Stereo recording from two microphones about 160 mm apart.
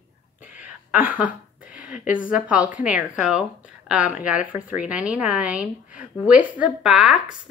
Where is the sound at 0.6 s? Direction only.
10° right (ahead or behind).